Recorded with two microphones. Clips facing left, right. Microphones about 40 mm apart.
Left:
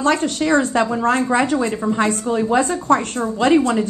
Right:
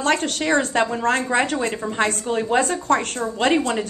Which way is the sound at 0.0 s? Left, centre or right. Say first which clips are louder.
Left 3 dB; right.